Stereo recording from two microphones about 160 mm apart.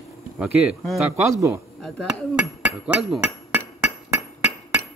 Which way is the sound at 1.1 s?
15° right (ahead or behind).